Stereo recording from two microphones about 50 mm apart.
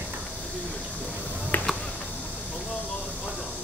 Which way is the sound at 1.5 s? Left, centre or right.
Left.